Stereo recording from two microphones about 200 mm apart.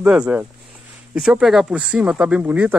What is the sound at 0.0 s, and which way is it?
Speech, 5° right (ahead or behind).